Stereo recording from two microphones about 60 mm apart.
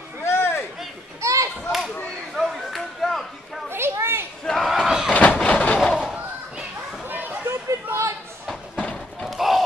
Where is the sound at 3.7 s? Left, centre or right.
Right.